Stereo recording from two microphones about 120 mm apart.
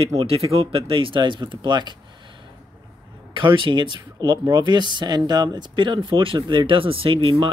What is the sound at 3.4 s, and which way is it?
Speech, 45° right (ahead or behind).